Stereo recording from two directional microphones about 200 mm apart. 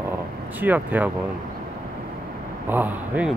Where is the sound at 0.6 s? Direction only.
10° right (ahead or behind).